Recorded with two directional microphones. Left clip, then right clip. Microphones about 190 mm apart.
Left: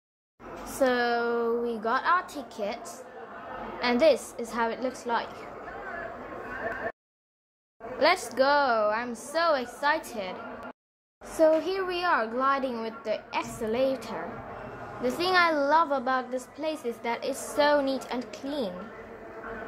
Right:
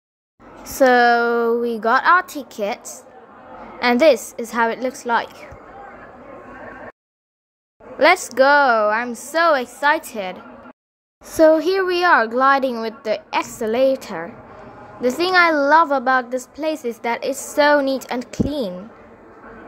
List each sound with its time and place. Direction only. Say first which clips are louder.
0.7 s a woman's voice: right 12 dB; 40° right (ahead or behind)
8.0 s a woman's voice: right 10 dB; 40° right (ahead or behind)